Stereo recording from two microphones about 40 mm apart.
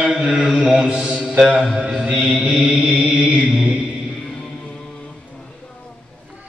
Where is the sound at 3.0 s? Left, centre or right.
Right.